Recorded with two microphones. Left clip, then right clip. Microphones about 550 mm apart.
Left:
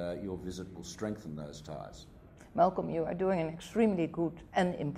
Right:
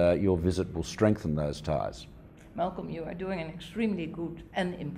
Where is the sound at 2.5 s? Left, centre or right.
Left.